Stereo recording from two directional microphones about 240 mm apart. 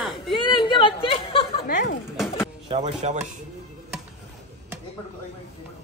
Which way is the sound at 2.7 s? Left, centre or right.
Right.